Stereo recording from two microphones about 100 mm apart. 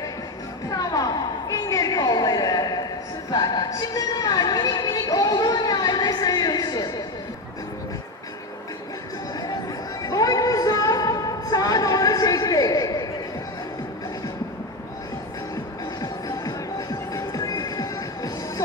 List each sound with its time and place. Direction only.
0.7 s a sound: 40° left (ahead or behind)
3.3 s a woman's voice: 40° left (ahead or behind)
10.0 s music: 40° left (ahead or behind)
16.0 s music: 40° left (ahead or behind)